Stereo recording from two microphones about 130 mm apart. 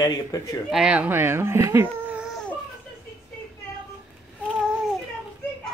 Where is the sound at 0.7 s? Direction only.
10° right (ahead or behind).